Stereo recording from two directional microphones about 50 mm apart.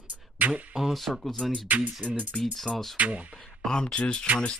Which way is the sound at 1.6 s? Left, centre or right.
Right.